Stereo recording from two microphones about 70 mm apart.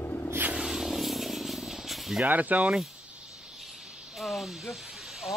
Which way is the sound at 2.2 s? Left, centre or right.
Right.